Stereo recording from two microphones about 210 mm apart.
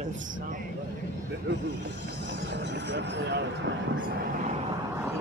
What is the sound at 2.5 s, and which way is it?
Speech, 55° right (ahead or behind).